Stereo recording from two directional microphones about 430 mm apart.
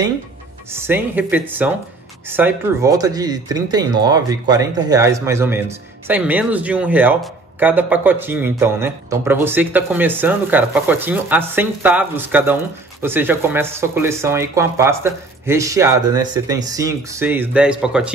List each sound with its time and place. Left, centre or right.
0.7 s speech: centre